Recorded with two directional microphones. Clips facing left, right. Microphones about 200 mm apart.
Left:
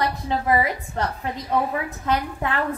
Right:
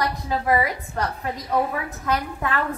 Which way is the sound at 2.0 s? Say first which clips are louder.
Even; 25° left (ahead or behind).